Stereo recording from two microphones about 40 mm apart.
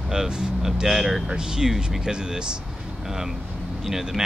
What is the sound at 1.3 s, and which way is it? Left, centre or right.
Speech, centre.